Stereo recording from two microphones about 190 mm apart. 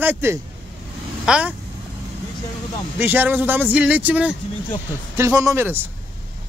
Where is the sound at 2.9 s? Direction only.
10° right (ahead or behind).